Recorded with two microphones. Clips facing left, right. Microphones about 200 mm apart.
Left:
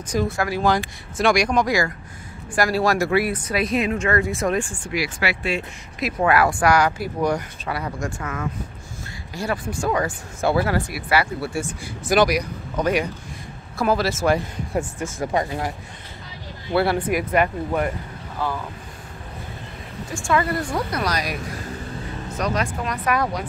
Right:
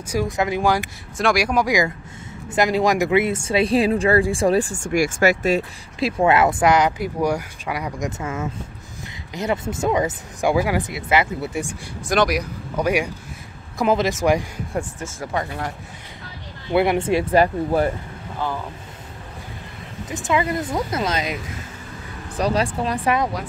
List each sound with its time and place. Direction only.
0.4 s speech: 15° right (ahead or behind)
8.2 s speech: 25° right (ahead or behind)
12.1 s speech: centre (ahead or behind); by 14.5 s 15° right (ahead or behind)
14.7 s speech: 10° left (ahead or behind)
16.7 s speech: 20° right (ahead or behind)
20.1 s speech: 20° right (ahead or behind)